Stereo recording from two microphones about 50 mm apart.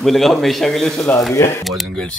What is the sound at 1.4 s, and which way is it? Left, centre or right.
Speech, left.